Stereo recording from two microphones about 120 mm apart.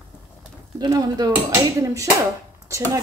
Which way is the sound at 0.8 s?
30° right (ahead or behind).